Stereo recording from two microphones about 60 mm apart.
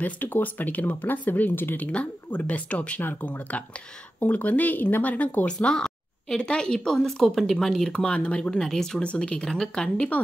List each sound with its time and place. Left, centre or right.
0.0 s speech: left
1.9 s speech: left; by 7.9 s centre
7.9 s speech: centre
9.0 s speech: centre